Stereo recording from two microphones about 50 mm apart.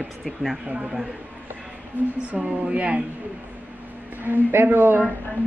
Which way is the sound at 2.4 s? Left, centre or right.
Centre.